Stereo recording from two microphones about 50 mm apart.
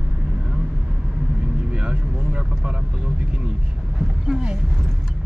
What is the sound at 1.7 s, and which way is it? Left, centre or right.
Vehicle, centre.